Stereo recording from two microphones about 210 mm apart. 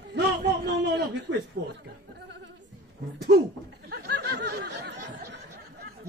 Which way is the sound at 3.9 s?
50° right (ahead or behind).